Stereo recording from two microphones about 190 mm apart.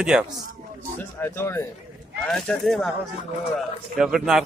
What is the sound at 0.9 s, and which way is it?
A man's voice, 15° left (ahead or behind).